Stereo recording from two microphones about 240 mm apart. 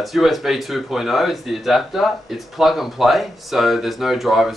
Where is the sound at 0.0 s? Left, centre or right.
Centre.